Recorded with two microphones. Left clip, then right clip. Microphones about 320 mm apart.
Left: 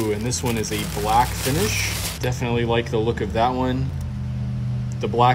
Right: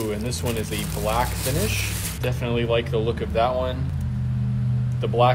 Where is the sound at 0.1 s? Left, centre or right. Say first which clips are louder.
Left 3 dB; left.